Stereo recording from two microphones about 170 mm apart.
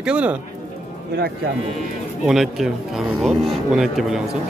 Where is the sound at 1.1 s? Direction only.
65° right (ahead or behind).